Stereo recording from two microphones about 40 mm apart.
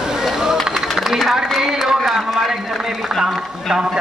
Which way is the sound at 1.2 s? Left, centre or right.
Centre.